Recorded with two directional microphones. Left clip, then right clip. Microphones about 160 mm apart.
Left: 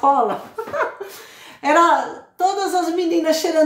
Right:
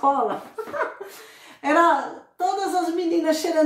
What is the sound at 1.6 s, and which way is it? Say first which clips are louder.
Speech: left 4 dB; centre (ahead or behind).